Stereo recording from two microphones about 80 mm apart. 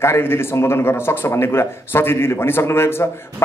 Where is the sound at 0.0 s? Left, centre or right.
Left.